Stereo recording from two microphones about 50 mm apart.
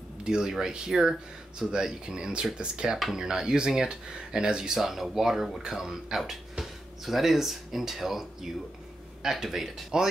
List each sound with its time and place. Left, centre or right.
0.2 s speech: centre